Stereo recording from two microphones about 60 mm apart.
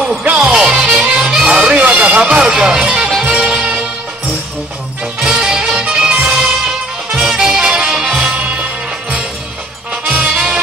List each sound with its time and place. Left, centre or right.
0.2 s music: right
0.6 s music: centre
5.2 s music: centre
8.3 s music: right
10.0 s music: right